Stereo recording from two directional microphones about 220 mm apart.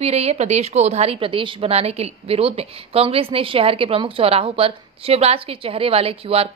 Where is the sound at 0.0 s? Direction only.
30° right (ahead or behind).